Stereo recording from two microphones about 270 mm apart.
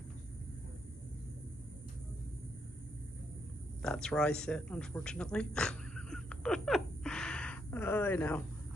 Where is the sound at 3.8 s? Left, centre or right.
Centre.